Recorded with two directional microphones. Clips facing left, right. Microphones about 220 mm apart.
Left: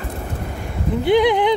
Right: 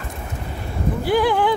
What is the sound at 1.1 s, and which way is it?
Speech, 20° left (ahead or behind).